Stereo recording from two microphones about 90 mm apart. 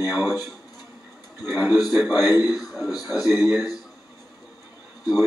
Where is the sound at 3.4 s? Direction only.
15° right (ahead or behind).